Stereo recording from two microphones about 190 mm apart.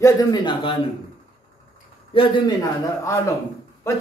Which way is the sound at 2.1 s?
25° left (ahead or behind).